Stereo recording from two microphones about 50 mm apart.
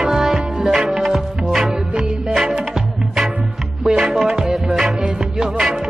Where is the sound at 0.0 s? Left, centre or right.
Centre.